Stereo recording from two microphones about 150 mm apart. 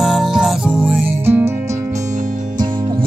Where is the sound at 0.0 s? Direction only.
5° right (ahead or behind).